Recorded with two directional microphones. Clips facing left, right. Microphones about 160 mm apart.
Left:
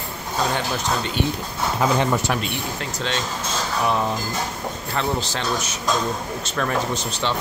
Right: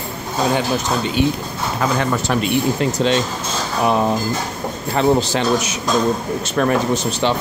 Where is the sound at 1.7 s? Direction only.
20° left (ahead or behind).